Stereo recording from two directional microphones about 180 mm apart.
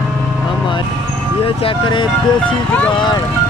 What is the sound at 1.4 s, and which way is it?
Speech, 30° left (ahead or behind).